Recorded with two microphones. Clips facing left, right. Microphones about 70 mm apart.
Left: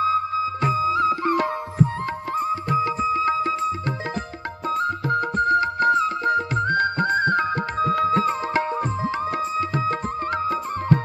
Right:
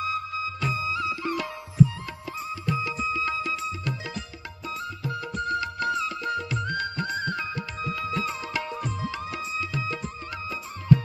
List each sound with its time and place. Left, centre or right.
0.0 s music: left
4.6 s music: left